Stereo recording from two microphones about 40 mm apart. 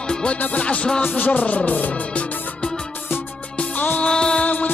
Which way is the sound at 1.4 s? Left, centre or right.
Left.